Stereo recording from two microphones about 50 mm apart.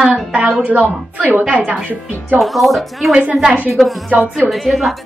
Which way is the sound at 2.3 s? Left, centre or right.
Centre.